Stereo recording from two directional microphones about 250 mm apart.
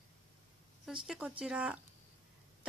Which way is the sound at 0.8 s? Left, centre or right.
Centre.